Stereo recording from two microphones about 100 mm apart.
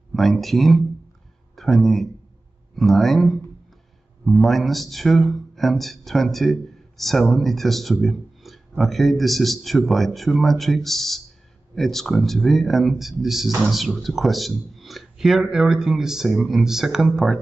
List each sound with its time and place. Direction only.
0.1 s speech: centre (ahead or behind)